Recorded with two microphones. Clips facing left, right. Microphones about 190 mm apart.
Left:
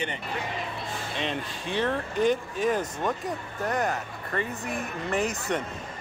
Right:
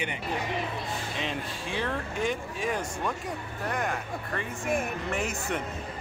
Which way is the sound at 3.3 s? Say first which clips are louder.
Left 3 dB; 40° left (ahead or behind).